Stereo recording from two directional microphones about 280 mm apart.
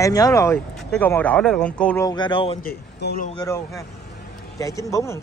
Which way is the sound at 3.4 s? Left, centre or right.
Centre.